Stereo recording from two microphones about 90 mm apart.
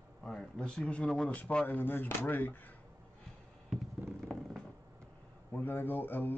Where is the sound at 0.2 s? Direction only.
10° left (ahead or behind).